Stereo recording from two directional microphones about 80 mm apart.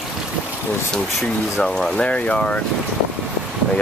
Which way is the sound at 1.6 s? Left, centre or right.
Centre.